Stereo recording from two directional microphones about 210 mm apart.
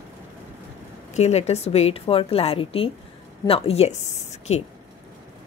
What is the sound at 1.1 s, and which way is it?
A woman's voice, 30° left (ahead or behind).